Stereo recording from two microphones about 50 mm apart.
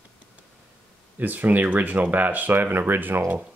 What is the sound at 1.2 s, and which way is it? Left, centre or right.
Speech, right.